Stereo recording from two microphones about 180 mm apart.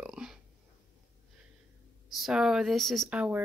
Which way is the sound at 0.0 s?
5° right (ahead or behind).